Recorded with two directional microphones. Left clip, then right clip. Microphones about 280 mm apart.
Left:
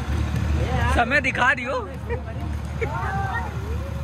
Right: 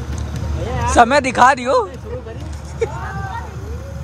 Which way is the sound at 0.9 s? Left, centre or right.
Centre.